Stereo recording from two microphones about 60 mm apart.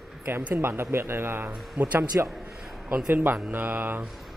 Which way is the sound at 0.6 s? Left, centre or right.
Right.